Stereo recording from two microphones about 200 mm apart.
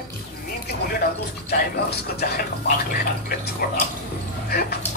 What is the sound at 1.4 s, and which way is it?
A woman's voice, 50° left (ahead or behind).